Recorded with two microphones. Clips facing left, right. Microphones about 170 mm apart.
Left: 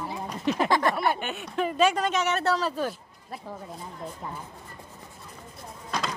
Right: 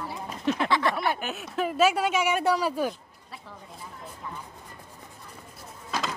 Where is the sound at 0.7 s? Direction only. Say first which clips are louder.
Left 3 dB; 45° left (ahead or behind).